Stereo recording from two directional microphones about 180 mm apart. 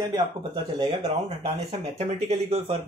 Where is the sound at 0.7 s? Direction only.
30° right (ahead or behind).